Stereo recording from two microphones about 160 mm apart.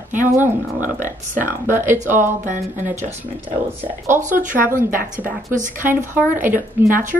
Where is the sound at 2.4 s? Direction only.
50° right (ahead or behind).